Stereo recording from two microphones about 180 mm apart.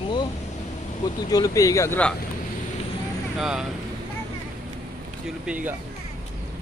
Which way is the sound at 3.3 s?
5° right (ahead or behind).